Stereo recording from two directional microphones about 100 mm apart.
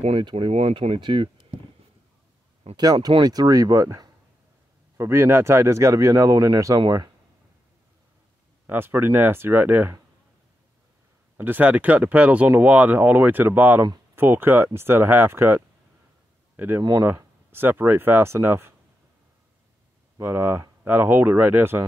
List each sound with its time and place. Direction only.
0.2 s speech: 55° right (ahead or behind)
0.5 s speech: 90° right
0.8 s speech: 60° right (ahead or behind)
2.7 s speech: 40° right (ahead or behind)
8.6 s speech: 20° right (ahead or behind)
11.3 s speech: 20° right (ahead or behind)
20.2 s speech: 25° right (ahead or behind)